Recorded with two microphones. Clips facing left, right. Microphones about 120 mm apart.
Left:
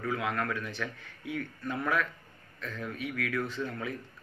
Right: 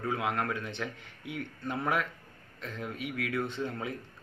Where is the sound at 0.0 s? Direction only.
25° right (ahead or behind).